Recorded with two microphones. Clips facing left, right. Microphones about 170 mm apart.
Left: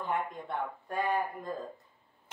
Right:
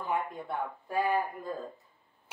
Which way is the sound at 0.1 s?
5° right (ahead or behind).